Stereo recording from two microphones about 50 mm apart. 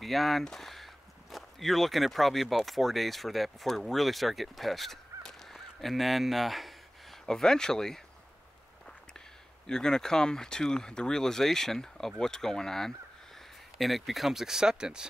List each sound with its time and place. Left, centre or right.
0.0 s speech: centre
7.2 s speech: centre
9.7 s speech: centre